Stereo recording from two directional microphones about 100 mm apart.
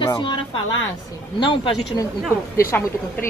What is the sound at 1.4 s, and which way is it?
Speech, 55° left (ahead or behind).